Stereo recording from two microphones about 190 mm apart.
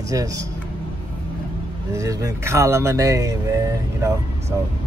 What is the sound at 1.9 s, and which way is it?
Speech, 15° right (ahead or behind).